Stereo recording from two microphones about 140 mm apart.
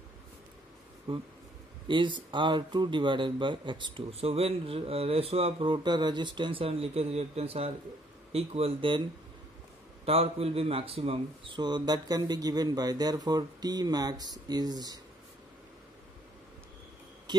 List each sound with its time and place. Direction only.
1.1 s speech: 35° right (ahead or behind)
10.0 s speech: 45° right (ahead or behind); by 15.0 s 30° right (ahead or behind)